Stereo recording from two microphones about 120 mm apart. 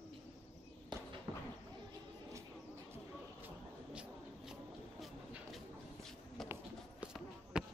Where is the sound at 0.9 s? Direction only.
40° right (ahead or behind).